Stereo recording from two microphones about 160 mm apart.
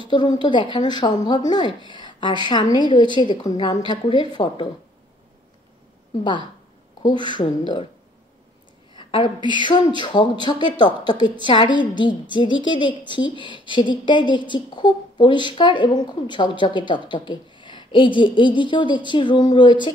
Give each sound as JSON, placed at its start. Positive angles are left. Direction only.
{"t": 0.0, "sound": "a woman's voice", "side_deg": 30}
{"t": 7.0, "sound": "a woman's voice", "side_deg": 25}
{"t": 8.9, "sound": "a sound", "side_deg": 30}
{"t": 9.6, "sound": "a woman's voice", "side_deg": 30}